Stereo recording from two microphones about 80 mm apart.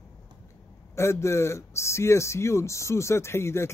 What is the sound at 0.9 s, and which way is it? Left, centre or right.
Speech, left.